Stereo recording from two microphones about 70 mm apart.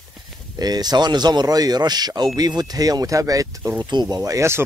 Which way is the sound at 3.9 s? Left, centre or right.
Right.